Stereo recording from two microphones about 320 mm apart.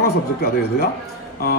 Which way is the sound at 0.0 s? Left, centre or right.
Left.